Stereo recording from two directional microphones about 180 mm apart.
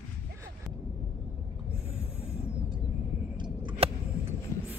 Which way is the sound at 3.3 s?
25° right (ahead or behind).